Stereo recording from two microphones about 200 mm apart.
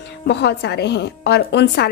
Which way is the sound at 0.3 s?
55° left (ahead or behind).